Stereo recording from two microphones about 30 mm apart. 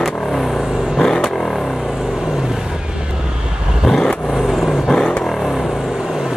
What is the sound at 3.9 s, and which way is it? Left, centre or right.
Vehicle, centre.